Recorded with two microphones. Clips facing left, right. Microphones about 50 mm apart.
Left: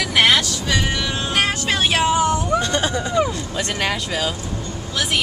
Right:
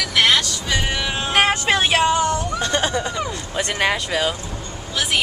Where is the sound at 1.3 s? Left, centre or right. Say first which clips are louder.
Right 4 dB; right.